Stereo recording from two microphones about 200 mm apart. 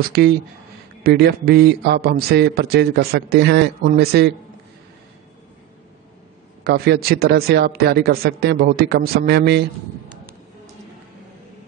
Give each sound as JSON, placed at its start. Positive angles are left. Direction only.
{"t": 0.0, "sound": "a man's voice", "side_deg": -50}
{"t": 6.6, "sound": "a man's voice", "side_deg": -55}